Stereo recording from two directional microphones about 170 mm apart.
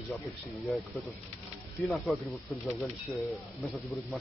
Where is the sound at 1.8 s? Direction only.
Centre (ahead or behind).